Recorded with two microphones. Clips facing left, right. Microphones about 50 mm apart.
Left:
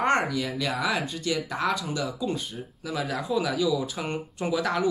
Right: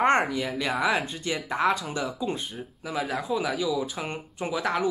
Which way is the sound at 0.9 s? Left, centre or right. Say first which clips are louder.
Even; right.